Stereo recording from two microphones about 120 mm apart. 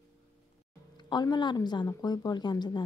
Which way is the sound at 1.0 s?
40° left (ahead or behind).